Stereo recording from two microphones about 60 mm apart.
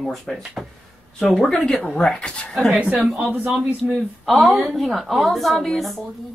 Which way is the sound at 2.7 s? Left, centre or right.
Right.